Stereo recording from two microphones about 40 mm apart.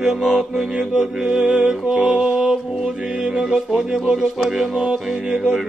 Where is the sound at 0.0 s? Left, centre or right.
Centre.